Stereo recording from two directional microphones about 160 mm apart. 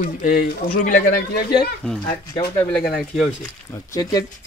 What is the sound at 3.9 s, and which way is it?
Speech, 25° left (ahead or behind).